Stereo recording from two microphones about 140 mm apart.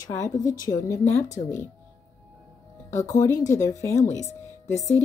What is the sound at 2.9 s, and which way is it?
Speech, 20° left (ahead or behind).